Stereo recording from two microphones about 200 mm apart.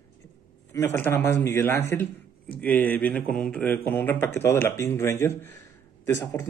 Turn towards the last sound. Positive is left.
turn(degrees=15)  # may be behind; listen again after turning